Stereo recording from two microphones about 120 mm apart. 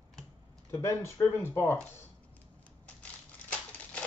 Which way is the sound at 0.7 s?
25° left (ahead or behind).